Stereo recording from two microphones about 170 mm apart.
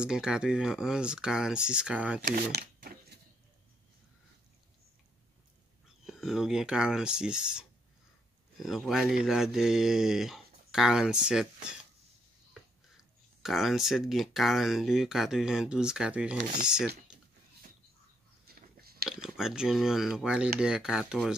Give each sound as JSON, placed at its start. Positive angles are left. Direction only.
{"t": 0.0, "sound": "speech", "side_deg": -5}
{"t": 2.3, "sound": "a sound", "side_deg": -65}
{"t": 6.0, "sound": "speech", "side_deg": 0}
{"t": 12.9, "sound": "speech", "side_deg": 0}
{"t": 18.5, "sound": "biting", "side_deg": -65}
{"t": 19.2, "sound": "speech", "side_deg": -5}